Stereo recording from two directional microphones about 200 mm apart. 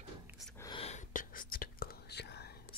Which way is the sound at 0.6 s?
25° left (ahead or behind).